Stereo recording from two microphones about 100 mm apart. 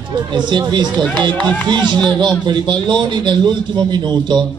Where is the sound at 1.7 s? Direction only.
50° right (ahead or behind).